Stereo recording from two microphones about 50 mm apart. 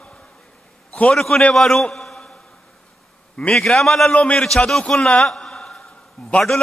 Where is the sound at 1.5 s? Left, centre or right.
Centre.